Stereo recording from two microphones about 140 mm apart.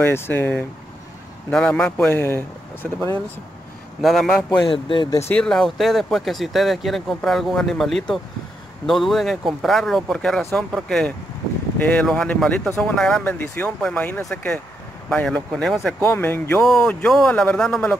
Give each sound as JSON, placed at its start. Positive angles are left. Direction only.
{"t": 0.0, "sound": "speech", "side_deg": 15}
{"t": 4.0, "sound": "speech", "side_deg": 0}
{"t": 4.6, "sound": "speech", "side_deg": 35}
{"t": 5.3, "sound": "speech", "side_deg": 5}
{"t": 16.0, "sound": "speech", "side_deg": 15}
{"t": 16.5, "sound": "speech", "side_deg": 5}